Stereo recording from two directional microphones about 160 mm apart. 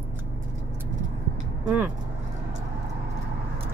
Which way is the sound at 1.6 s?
10° right (ahead or behind).